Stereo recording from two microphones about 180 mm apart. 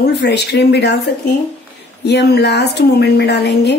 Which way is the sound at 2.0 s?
65° left (ahead or behind).